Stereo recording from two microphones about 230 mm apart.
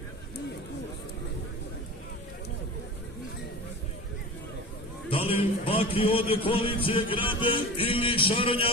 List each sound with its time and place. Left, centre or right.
5.1 s speech: left